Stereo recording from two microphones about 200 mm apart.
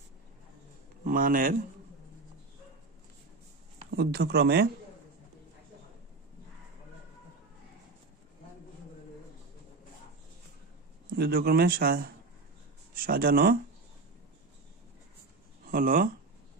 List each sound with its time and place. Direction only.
1.0 s speech: 45° right (ahead or behind)
3.9 s speech: 55° right (ahead or behind)
11.1 s speech: 50° right (ahead or behind)
15.7 s speech: 45° right (ahead or behind)